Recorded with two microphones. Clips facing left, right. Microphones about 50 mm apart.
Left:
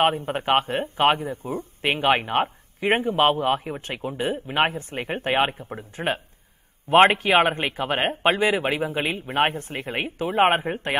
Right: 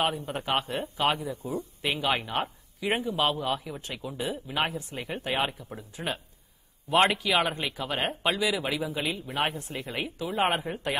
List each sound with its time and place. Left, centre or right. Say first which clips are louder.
0.0 s speech: left 7 dB; left